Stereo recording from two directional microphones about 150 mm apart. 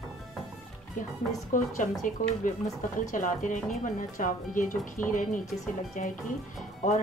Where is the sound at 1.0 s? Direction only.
60° left (ahead or behind).